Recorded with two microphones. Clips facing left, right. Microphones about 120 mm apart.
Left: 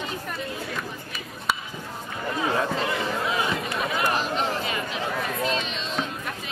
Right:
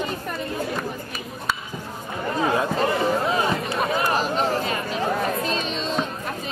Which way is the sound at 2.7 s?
40° right (ahead or behind).